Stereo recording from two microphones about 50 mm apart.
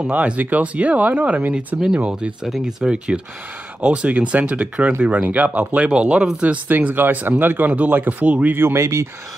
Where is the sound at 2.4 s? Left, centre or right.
Centre.